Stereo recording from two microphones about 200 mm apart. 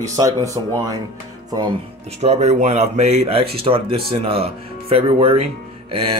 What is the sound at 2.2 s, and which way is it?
Speech, 35° right (ahead or behind).